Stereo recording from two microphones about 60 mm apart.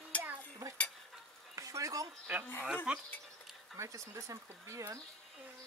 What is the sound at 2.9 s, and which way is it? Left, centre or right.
Speech, centre.